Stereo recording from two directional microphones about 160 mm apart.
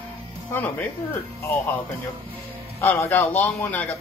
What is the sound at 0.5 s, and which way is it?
Speech, 15° left (ahead or behind).